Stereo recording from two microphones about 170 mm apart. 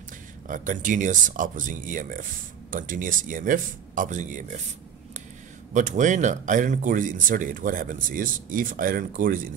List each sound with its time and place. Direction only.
0.5 s speech: 50° right (ahead or behind)
5.7 s speech: 45° right (ahead or behind)